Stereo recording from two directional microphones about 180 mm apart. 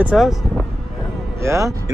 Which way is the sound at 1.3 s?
15° right (ahead or behind).